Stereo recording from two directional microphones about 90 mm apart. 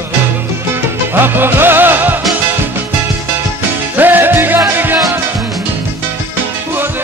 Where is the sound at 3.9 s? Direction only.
20° right (ahead or behind).